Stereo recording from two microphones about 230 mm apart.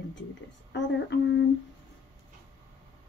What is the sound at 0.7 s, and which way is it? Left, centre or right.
Speech, left.